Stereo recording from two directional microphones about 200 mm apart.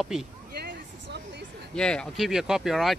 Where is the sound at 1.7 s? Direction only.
5° left (ahead or behind).